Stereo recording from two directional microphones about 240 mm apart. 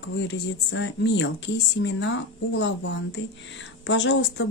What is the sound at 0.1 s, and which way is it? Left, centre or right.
Speech, left.